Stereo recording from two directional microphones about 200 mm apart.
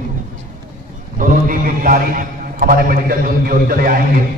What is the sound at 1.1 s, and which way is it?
A man's voice, 45° right (ahead or behind).